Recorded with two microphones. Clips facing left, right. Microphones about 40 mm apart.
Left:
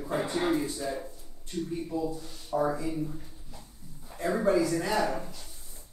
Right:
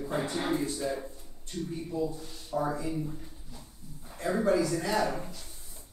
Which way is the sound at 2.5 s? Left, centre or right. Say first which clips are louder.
Left 3 dB; centre.